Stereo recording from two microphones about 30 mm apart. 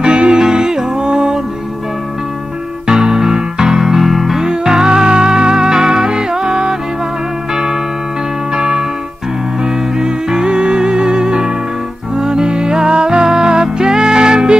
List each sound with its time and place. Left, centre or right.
0.0 s music: right
0.5 s music: right
2.9 s music: right; by 4.4 s centre
4.4 s music: right
8.5 s music: right
9.9 s music: right